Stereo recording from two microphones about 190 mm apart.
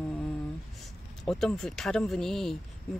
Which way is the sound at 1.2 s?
Centre (ahead or behind).